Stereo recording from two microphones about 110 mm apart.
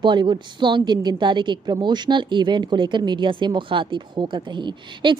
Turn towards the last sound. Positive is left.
turn(degrees=-45)  # may be behind; listen again after turning